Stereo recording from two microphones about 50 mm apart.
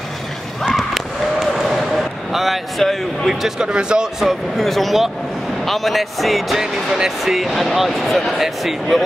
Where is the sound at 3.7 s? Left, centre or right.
Centre.